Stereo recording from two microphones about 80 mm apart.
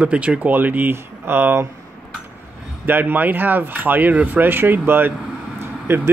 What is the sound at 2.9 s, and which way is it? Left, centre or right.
Speech, right.